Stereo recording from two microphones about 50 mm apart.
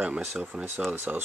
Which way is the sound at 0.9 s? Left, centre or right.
Right.